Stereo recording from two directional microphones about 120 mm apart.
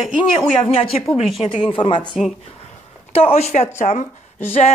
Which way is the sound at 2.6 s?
55° left (ahead or behind).